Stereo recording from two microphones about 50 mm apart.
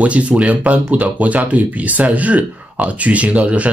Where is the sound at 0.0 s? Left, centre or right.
Right.